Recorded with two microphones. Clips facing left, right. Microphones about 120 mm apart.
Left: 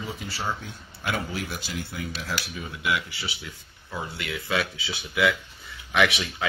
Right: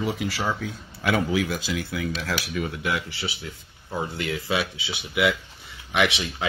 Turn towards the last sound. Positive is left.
turn(degrees=-20)  # may be behind; listen again after turning